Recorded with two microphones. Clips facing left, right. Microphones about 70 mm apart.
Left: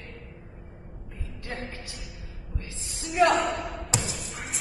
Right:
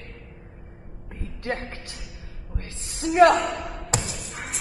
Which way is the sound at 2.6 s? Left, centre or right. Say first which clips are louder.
Right 12 dB; right.